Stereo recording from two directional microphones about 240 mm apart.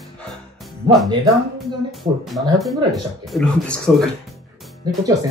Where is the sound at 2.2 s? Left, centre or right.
Centre.